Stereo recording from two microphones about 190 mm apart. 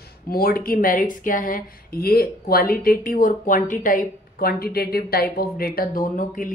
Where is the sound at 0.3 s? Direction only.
50° left (ahead or behind).